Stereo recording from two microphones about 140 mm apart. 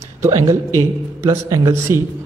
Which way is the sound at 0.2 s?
25° right (ahead or behind).